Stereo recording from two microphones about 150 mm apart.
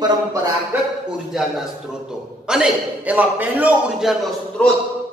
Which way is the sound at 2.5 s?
5° right (ahead or behind).